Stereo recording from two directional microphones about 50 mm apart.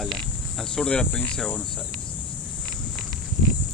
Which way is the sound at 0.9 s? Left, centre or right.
Centre.